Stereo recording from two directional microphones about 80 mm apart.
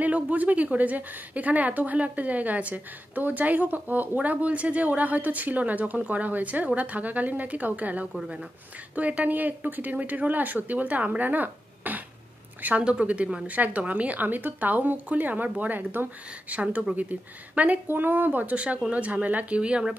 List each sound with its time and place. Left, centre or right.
0.0 s a woman's voice: centre
8.1 s speech: centre
8.9 s a woman's voice: centre